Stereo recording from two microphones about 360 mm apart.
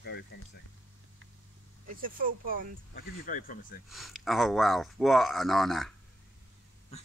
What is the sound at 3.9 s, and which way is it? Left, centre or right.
Speech, centre.